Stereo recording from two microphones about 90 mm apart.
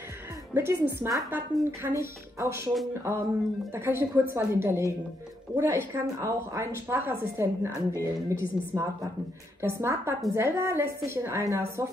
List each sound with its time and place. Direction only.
0.6 s a woman's voice: 25° right (ahead or behind)